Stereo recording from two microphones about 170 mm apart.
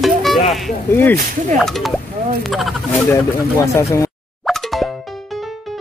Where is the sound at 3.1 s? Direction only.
15° left (ahead or behind).